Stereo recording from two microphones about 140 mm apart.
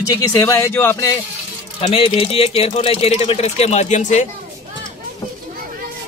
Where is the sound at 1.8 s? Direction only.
45° left (ahead or behind); by 4.2 s 60° left (ahead or behind).